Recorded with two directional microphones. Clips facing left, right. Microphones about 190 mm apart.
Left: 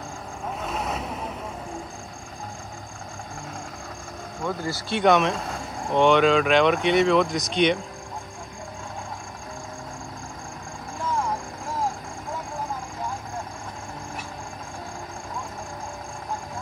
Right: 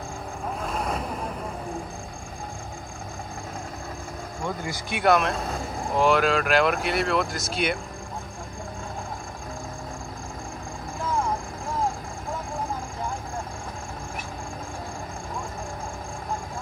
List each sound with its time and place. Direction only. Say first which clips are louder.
0.6 s vehicle: right 1 dB; 5° left (ahead or behind)
4.6 s speech: left 4 dB; 15° right (ahead or behind)
5.0 s speech: left 1 dB; centre (ahead or behind)